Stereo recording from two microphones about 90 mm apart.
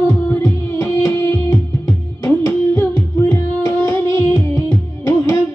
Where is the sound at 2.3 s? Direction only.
20° left (ahead or behind).